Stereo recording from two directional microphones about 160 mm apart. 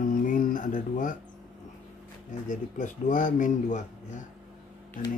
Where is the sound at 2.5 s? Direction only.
55° left (ahead or behind).